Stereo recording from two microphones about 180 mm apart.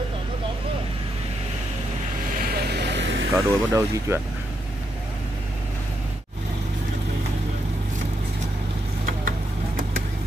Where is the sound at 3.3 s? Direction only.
20° right (ahead or behind).